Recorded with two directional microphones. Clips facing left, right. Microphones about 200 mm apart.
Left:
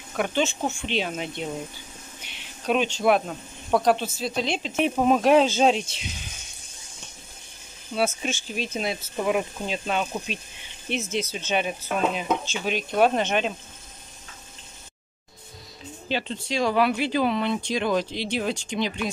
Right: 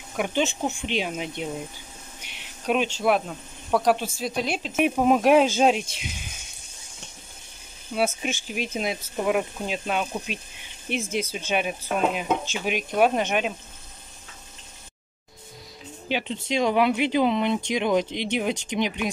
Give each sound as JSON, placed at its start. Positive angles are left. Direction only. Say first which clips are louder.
{"t": 0.1, "sound": "speech", "louder": "even", "side_deg": -10}
{"t": 2.6, "sound": "speech", "louder": "left 1 dB", "side_deg": -5}
{"t": 7.9, "sound": "speech", "louder": "even", "side_deg": -10}
{"t": 16.1, "sound": "speech", "louder": "right 1 dB", "side_deg": -15}